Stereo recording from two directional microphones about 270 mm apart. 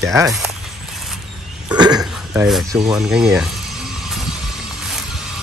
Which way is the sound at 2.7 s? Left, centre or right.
Centre.